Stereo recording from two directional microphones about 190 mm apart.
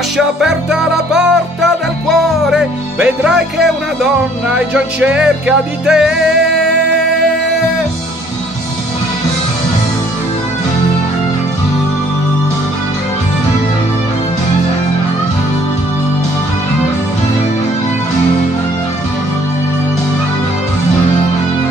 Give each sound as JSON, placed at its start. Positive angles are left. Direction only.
{"t": 0.4, "sound": "music", "side_deg": -5}